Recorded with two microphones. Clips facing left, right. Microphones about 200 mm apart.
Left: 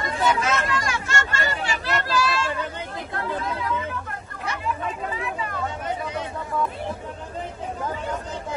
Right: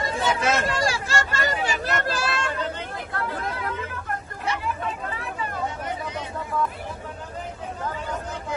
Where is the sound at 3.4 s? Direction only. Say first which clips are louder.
Left 3 dB; 55° right (ahead or behind).